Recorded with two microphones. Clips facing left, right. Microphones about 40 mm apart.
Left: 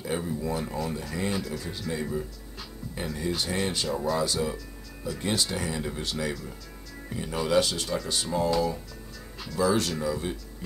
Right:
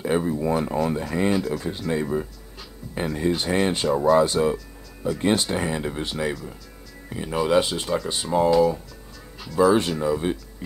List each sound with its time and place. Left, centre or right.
0.0 s speech: right
1.3 s speech: centre
1.6 s speech: right
4.2 s speech: right
8.5 s speech: centre
9.6 s speech: right